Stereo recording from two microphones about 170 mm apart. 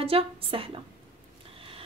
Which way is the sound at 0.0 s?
35° right (ahead or behind).